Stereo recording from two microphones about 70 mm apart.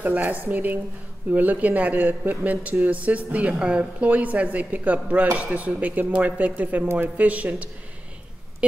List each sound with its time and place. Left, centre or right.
0.0 s speech: right